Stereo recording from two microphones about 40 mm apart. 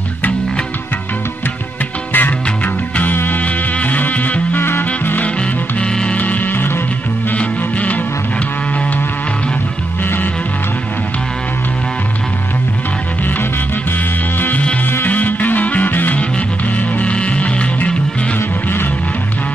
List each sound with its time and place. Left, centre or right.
2.1 s music: left
4.6 s music: left
6.1 s music: left
6.5 s music: left
7.3 s music: left
15.0 s music: left
15.9 s music: left
16.2 s music: left